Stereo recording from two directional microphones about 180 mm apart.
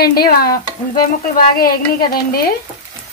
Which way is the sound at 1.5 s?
55° left (ahead or behind).